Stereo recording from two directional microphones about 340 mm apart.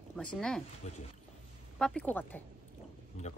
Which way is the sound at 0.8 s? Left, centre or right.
Centre.